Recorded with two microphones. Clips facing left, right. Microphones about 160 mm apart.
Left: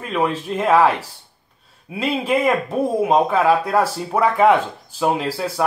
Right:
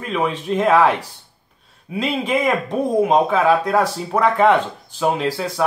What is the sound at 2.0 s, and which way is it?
Speech, 5° left (ahead or behind).